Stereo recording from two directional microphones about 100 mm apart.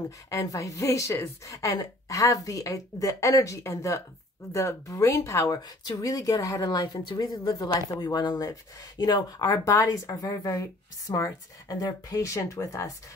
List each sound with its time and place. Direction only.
0.3 s a woman's voice: 30° left (ahead or behind)